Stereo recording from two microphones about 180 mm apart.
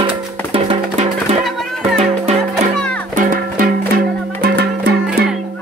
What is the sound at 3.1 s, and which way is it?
Music, 50° right (ahead or behind).